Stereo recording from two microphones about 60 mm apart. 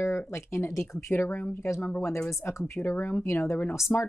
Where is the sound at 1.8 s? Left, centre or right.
Left.